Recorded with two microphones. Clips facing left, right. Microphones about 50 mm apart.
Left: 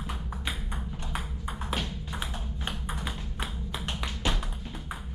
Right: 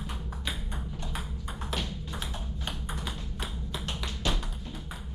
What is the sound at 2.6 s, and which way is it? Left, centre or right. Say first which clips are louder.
Tap: left 2 dB; centre.